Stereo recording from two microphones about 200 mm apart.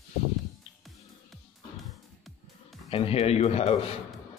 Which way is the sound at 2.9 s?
30° left (ahead or behind).